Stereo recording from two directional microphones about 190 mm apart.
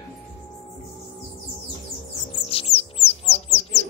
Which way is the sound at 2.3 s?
30° left (ahead or behind).